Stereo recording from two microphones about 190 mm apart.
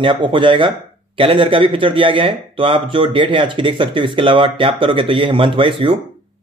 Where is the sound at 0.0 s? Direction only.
25° right (ahead or behind).